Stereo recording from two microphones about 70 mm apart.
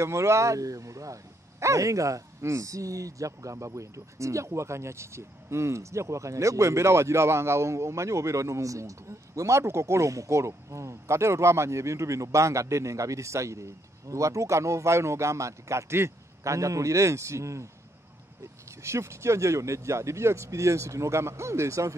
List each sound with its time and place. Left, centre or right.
0.0 s speech: right